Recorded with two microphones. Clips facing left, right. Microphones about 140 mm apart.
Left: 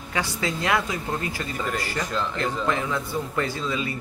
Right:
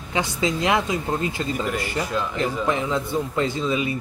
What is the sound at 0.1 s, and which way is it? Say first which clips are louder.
Speech: right 4 dB; 20° right (ahead or behind).